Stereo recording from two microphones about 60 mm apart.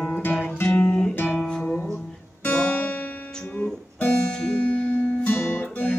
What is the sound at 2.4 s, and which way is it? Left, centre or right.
Music, left.